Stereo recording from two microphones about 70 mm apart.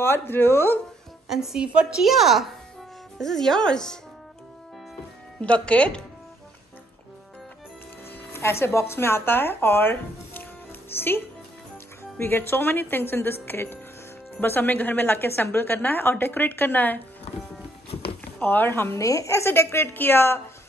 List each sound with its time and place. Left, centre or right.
0.0 s speech: left
1.3 s a woman's voice: centre
5.4 s speech: centre
8.3 s a woman's voice: left
18.4 s speech: left
18.9 s speech: left